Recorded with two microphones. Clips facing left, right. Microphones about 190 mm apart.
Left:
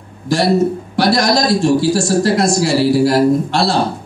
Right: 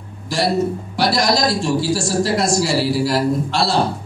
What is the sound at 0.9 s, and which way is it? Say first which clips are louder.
A woman's voice: left 4 dB; 50° left (ahead or behind).